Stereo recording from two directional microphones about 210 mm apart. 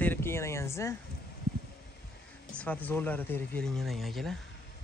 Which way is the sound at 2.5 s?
5° left (ahead or behind).